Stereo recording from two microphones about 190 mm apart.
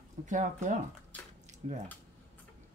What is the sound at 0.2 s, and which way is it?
Speech, 40° right (ahead or behind).